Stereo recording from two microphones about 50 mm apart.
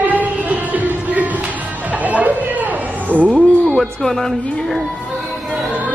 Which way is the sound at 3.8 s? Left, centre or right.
Centre.